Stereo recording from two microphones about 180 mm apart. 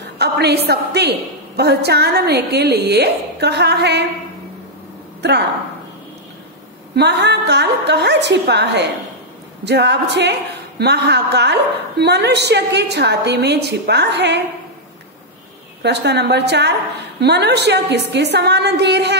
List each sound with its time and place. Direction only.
0.2 s a woman's voice: 65° right (ahead or behind)
7.0 s a woman's voice: 70° right (ahead or behind)
15.8 s a woman's voice: 70° right (ahead or behind)